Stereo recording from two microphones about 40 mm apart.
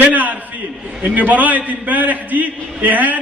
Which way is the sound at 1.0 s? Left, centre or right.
Right.